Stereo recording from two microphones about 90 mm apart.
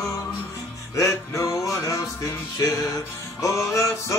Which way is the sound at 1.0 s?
35° left (ahead or behind).